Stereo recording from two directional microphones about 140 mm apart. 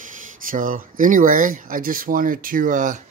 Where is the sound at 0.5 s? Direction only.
75° right (ahead or behind).